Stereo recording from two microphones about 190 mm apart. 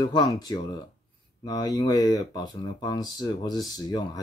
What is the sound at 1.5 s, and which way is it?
Speech, 20° left (ahead or behind).